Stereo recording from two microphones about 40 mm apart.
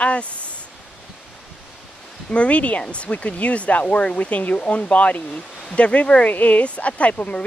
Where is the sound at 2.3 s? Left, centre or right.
Left.